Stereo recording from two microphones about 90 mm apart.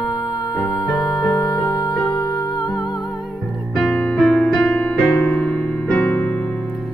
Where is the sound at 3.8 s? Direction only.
5° left (ahead or behind).